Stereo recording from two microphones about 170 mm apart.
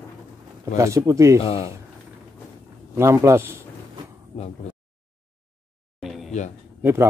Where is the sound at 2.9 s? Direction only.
15° right (ahead or behind).